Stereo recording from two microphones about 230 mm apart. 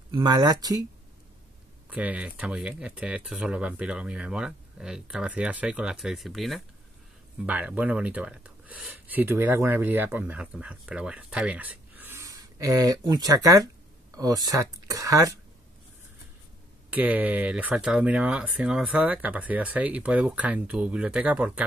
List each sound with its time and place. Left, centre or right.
0.1 s speech: centre
1.9 s speech: centre
16.9 s speech: centre